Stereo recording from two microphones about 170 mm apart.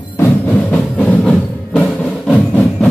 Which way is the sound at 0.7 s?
5° left (ahead or behind).